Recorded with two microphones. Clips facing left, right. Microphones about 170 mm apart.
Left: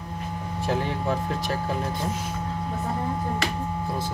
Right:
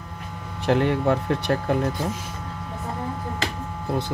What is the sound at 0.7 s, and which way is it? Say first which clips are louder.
Speech: right 7 dB; 65° right (ahead or behind).